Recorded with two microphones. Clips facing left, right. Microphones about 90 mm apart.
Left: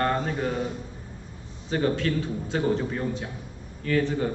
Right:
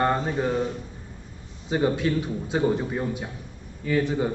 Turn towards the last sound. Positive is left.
turn(degrees=-15)  # may be behind; listen again after turning